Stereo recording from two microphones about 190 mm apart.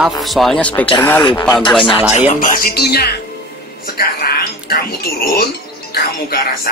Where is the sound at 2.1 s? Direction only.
40° left (ahead or behind); by 3.1 s 55° left (ahead or behind).